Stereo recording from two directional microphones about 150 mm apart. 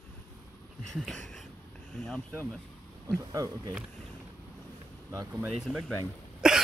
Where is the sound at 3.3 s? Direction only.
25° right (ahead or behind).